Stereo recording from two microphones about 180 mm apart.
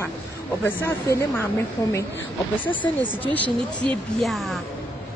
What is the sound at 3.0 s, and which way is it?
Speech, 10° left (ahead or behind).